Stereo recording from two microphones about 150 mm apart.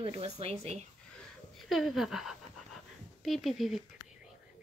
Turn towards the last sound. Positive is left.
turn(degrees=0)  # may be behind; listen again after turning